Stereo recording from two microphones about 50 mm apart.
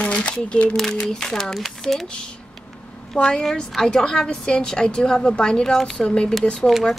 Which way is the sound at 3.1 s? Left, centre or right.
Centre.